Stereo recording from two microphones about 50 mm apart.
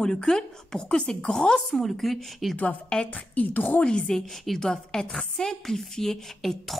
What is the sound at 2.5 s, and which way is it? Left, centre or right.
A woman's voice, left.